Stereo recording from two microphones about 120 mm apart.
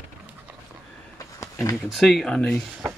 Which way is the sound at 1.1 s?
30° left (ahead or behind).